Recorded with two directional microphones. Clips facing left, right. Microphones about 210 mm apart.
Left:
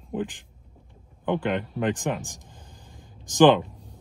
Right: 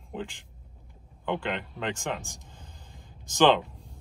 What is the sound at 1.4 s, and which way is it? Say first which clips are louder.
Speech: left 7 dB; 15° left (ahead or behind).